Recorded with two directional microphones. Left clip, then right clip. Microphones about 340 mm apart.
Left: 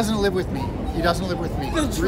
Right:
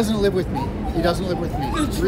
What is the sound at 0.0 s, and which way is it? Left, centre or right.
Speech, centre.